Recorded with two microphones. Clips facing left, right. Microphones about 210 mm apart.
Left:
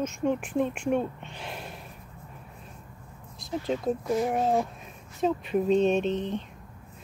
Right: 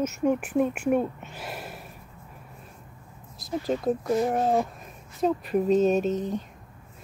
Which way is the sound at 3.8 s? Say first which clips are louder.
Right 3 dB; centre (ahead or behind).